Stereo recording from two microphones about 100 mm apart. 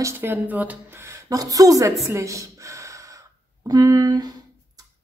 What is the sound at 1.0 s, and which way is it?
Speech, 35° right (ahead or behind).